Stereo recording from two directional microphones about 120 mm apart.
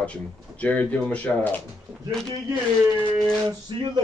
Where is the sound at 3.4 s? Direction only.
35° right (ahead or behind).